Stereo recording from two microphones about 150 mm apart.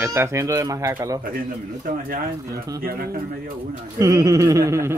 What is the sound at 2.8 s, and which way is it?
Speech, 85° right.